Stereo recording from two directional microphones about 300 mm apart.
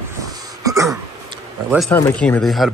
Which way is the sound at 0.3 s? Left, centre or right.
Centre.